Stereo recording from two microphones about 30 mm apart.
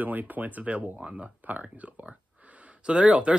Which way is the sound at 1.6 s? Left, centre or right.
Right.